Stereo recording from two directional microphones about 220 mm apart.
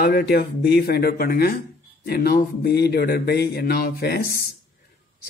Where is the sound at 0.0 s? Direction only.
45° left (ahead or behind).